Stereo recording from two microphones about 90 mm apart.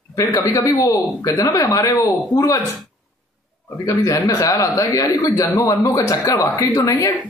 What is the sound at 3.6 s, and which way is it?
A man's voice, 35° left (ahead or behind).